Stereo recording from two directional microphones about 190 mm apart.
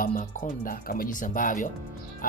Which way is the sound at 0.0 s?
45° left (ahead or behind).